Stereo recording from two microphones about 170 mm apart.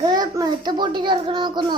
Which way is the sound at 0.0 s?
20° right (ahead or behind).